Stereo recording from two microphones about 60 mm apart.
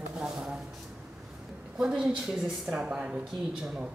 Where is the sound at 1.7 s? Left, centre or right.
Centre.